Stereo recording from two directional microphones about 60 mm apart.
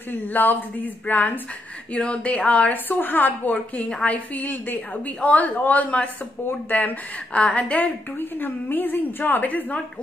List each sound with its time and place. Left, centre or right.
0.1 s a woman's voice: left